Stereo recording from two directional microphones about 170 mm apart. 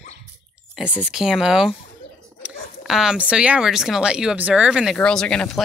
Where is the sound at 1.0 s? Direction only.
5° right (ahead or behind).